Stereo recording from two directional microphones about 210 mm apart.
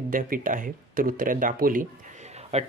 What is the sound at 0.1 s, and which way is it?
A man's voice, 40° right (ahead or behind).